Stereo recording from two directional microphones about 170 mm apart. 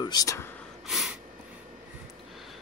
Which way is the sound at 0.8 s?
Centre (ahead or behind).